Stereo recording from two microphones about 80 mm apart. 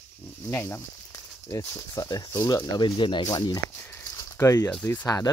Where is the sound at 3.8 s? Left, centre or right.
Left.